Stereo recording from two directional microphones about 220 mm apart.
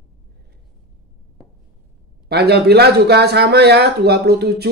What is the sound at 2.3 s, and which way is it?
Speech, 45° right (ahead or behind).